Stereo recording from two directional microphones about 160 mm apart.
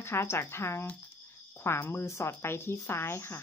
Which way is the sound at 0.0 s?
15° left (ahead or behind).